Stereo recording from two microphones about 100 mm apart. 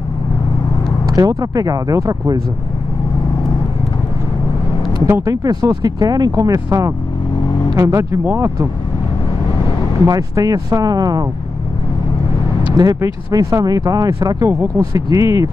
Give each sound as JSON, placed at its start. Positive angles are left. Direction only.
{"t": 1.0, "sound": "speech", "side_deg": -35}
{"t": 5.2, "sound": "speech", "side_deg": -40}
{"t": 10.0, "sound": "speech", "side_deg": -35}
{"t": 12.7, "sound": "speech", "side_deg": -40}